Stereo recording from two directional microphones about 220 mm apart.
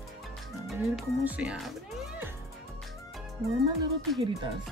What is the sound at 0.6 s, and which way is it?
Speech, 5° right (ahead or behind).